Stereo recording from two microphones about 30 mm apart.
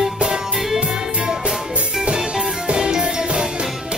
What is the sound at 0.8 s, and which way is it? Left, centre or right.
Music, right.